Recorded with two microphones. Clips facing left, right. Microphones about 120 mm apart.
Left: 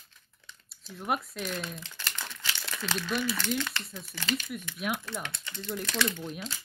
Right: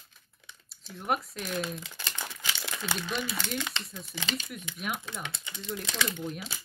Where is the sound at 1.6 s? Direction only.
10° right (ahead or behind).